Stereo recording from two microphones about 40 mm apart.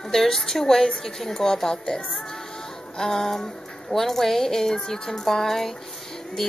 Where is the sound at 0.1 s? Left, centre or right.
Centre.